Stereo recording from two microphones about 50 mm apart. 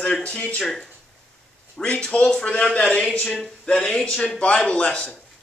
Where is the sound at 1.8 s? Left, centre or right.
Centre.